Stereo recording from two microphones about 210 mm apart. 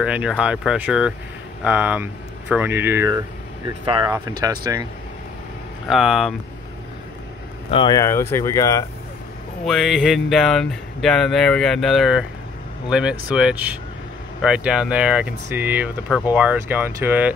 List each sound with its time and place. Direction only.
0.0 s speech: 5° right (ahead or behind)
5.9 s speech: centre (ahead or behind)
7.7 s speech: 20° left (ahead or behind)
9.7 s speech: centre (ahead or behind)
13.3 s speech: 5° right (ahead or behind)